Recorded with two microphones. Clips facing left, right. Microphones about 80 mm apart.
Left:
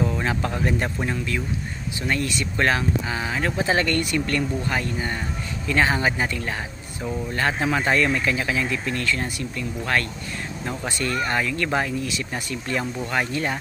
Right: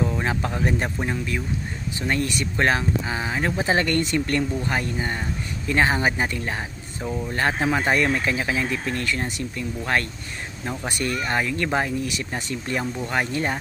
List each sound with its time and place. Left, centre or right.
0.0 s a sound: right
0.7 s speech: right
11.2 s speech: right